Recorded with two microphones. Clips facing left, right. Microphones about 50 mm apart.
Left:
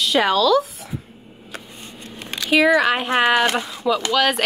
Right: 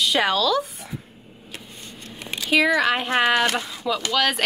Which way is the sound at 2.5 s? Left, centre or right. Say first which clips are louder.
Left 3 dB; centre.